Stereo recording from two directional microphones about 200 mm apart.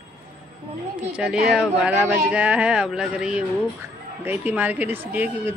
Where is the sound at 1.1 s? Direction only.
5° right (ahead or behind).